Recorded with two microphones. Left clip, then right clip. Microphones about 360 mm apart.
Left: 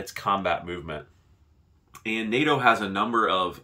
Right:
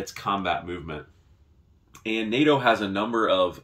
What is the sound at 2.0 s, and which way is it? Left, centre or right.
Speech, centre.